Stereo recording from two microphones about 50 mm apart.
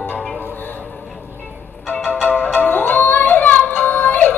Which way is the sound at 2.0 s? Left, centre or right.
Left.